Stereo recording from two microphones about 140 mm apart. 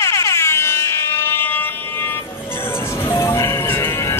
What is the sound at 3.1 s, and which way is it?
Music, 20° left (ahead or behind).